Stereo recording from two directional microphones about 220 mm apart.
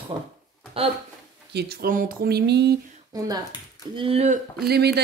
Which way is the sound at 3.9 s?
25° right (ahead or behind).